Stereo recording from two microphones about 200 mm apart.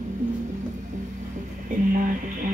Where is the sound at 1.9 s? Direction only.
45° right (ahead or behind).